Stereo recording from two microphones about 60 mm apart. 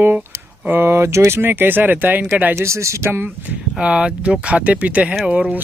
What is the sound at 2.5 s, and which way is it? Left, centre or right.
Speech, right.